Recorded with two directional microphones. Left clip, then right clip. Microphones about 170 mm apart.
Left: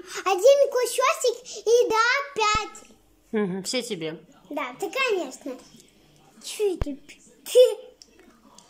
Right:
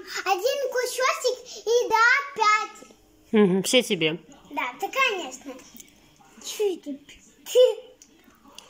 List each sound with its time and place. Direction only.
0.0 s a child's voice: 20° left (ahead or behind)
3.3 s speech: 10° right (ahead or behind)
4.6 s a child's voice: 25° left (ahead or behind)
6.4 s a child's voice: 5° left (ahead or behind)